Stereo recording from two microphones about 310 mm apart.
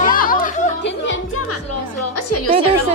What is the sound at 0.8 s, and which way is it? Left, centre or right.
Music, left.